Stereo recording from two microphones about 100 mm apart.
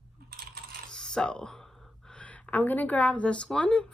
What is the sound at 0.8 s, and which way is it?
A woman's voice, 5° left (ahead or behind).